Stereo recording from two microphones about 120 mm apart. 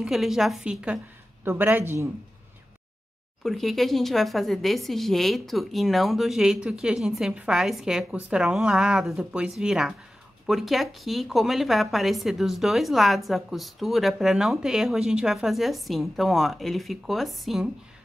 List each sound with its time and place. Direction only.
0.0 s a woman's voice: 5° right (ahead or behind)
3.4 s a woman's voice: centre (ahead or behind)